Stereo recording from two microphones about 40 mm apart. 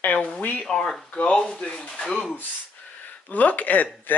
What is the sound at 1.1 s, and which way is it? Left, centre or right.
Speech, left.